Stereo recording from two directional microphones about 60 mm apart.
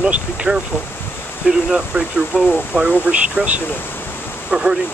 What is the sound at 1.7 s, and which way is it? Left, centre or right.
Speech, centre.